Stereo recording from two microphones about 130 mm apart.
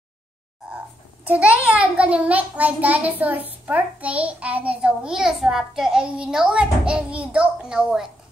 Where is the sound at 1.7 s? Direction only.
10° right (ahead or behind).